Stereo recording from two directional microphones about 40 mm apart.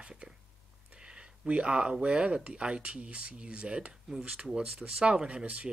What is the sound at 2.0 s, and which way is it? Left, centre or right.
Speech, right.